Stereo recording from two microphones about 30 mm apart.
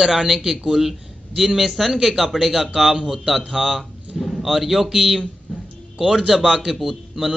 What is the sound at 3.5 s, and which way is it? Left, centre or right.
Speech, centre.